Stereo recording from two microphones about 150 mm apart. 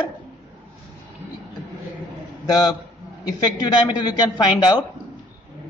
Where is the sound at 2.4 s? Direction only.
25° left (ahead or behind).